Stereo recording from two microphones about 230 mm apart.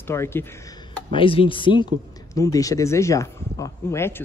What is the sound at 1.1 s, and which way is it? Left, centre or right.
A woman's voice, left.